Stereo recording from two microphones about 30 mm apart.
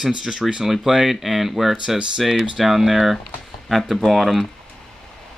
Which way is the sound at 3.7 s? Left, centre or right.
Centre.